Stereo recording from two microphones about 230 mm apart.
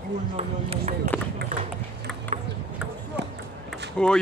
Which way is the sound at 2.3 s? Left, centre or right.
Right.